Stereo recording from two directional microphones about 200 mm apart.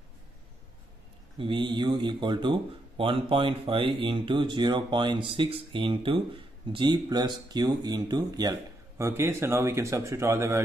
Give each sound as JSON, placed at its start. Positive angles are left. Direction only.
{"t": 1.4, "sound": "speech", "side_deg": -25}